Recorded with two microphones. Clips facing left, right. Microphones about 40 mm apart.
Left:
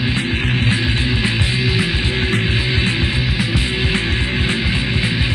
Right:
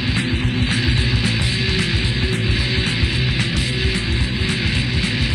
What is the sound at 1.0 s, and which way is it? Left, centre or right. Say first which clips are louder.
Music: left 2 dB; left.